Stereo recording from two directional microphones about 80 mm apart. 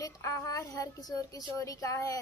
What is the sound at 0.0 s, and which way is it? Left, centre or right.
Speech, left.